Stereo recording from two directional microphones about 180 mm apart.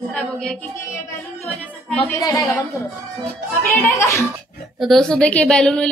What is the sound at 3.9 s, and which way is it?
Speech, 15° left (ahead or behind).